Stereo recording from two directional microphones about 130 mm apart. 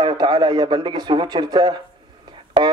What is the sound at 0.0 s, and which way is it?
A man's voice, 35° right (ahead or behind).